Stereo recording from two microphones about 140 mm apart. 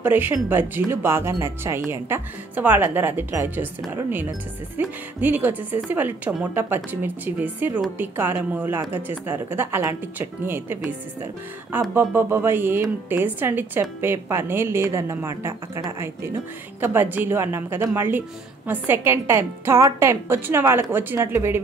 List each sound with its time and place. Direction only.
0.0 s a woman's voice: 15° right (ahead or behind)
11.9 s a woman's voice: 15° right (ahead or behind)